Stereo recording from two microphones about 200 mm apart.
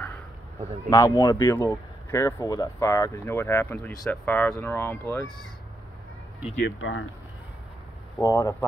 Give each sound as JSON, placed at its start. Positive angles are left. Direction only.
{"t": 0.8, "sound": "speech", "side_deg": 20}
{"t": 6.6, "sound": "speech", "side_deg": 75}
{"t": 8.2, "sound": "speech", "side_deg": 15}